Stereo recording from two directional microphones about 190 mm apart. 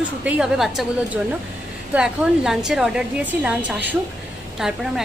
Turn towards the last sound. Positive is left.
turn(degrees=0)  # may be behind; listen again after turning